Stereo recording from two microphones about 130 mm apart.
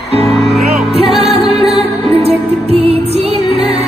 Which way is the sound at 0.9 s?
50° right (ahead or behind).